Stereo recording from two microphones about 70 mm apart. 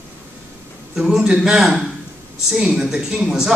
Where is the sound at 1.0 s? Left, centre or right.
Centre.